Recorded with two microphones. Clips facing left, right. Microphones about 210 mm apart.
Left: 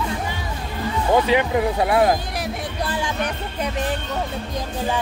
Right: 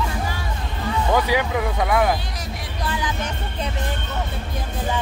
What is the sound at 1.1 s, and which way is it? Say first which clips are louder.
Speech: left 4 dB; 25° left (ahead or behind).